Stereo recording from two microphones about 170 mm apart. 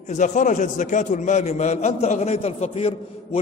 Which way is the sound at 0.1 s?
45° left (ahead or behind).